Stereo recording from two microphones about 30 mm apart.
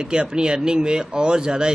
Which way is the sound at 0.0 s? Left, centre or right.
Right.